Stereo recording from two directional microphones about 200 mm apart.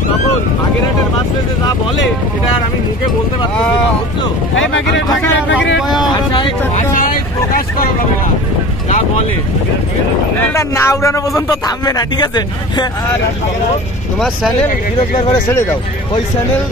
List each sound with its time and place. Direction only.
4.6 s speech: 70° left (ahead or behind)
5.8 s speech: centre (ahead or behind)
6.1 s speech: 25° left (ahead or behind)
6.7 s vehicle: 45° left (ahead or behind)
10.4 s speech: 15° left (ahead or behind)
14.2 s speech: centre (ahead or behind)